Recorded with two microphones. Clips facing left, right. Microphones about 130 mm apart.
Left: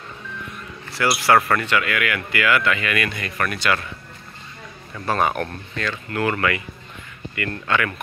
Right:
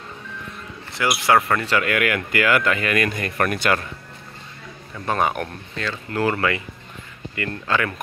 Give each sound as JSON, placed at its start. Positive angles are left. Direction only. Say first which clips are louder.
{"t": 0.9, "sound": "speech", "louder": "left 1 dB", "side_deg": -15}
{"t": 1.7, "sound": "speech", "louder": "right 2 dB", "side_deg": -45}
{"t": 5.0, "sound": "speech", "louder": "left 1 dB", "side_deg": -15}
{"t": 5.9, "sound": "speech", "louder": "right 1 dB", "side_deg": -30}
{"t": 7.3, "sound": "speech", "louder": "even", "side_deg": -30}